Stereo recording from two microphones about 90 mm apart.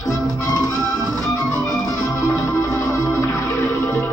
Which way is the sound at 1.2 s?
35° left (ahead or behind).